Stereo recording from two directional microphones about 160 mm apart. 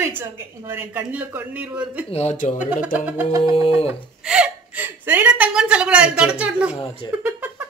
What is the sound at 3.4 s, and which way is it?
Bird, 35° left (ahead or behind).